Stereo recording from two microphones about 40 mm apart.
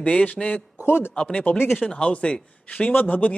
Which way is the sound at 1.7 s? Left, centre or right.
Centre.